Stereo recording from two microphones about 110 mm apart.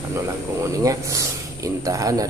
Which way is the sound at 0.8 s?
30° right (ahead or behind).